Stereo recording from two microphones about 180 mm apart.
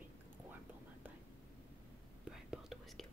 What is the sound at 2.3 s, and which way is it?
Whispering, centre (ahead or behind).